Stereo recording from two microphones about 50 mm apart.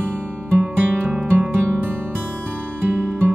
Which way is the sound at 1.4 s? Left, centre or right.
Right.